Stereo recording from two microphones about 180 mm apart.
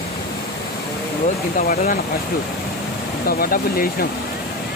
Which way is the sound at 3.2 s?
55° left (ahead or behind).